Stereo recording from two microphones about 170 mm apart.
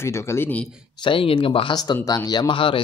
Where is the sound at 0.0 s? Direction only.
15° left (ahead or behind).